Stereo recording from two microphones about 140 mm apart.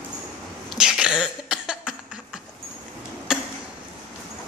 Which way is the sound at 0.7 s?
5° right (ahead or behind).